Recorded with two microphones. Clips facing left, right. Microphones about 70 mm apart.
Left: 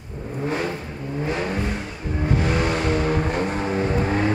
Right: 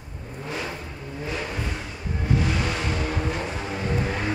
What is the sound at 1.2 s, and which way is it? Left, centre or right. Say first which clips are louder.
Vehicle: left 5 dB; left.